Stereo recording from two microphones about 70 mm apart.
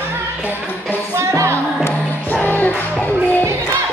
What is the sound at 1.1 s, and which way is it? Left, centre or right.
Music, right.